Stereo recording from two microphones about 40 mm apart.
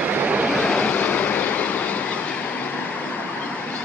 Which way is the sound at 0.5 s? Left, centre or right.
Left.